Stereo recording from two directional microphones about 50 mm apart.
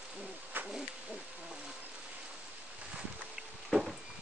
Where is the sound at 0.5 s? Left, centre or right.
Right.